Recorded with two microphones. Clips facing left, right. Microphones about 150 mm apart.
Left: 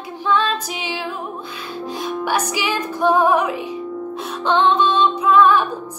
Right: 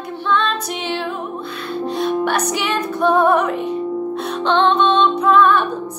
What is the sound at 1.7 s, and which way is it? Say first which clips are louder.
Music: right 6 dB; 65° right (ahead or behind).